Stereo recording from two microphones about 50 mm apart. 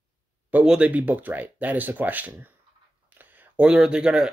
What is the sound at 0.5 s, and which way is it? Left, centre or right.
Speech, right.